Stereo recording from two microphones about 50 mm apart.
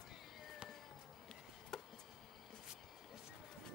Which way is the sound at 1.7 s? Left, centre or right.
Centre.